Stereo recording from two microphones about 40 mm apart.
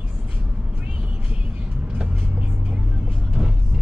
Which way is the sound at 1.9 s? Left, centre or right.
Right.